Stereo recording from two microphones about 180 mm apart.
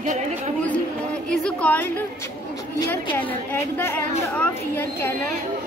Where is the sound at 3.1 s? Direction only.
10° left (ahead or behind).